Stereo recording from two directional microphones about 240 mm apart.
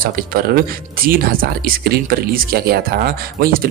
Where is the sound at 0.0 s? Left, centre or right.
Right.